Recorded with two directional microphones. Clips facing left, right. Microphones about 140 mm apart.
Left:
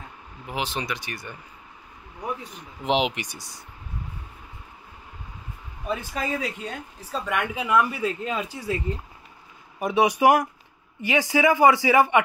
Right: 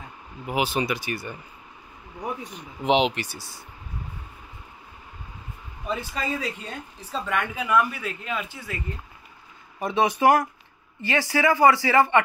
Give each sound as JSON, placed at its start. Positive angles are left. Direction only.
{"t": 0.5, "sound": "speech", "side_deg": -10}
{"t": 2.8, "sound": "speech", "side_deg": 5}
{"t": 5.9, "sound": "speech", "side_deg": 10}
{"t": 9.8, "sound": "a man's voice", "side_deg": 10}